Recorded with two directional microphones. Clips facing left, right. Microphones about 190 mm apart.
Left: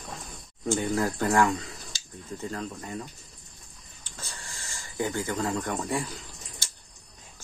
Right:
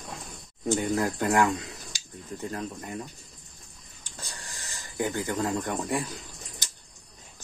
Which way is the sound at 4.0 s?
15° right (ahead or behind).